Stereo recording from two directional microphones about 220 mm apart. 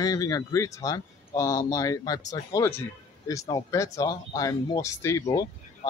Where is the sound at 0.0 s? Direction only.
15° left (ahead or behind).